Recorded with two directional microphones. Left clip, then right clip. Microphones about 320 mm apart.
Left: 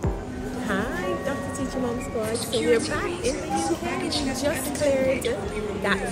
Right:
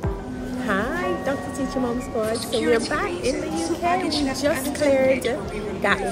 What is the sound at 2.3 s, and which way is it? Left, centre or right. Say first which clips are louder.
Music: right 1 dB; centre.